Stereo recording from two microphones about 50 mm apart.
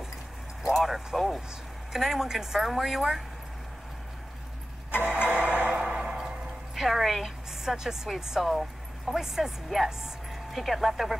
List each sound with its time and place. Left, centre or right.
0.7 s a sound: centre
1.9 s a woman's voice: centre
4.9 s vehicle: left
5.3 s music: right
6.7 s a woman's voice: centre
9.8 s music: centre
10.6 s a woman's voice: centre